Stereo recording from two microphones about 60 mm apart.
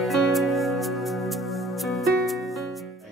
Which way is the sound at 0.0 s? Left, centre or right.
Centre.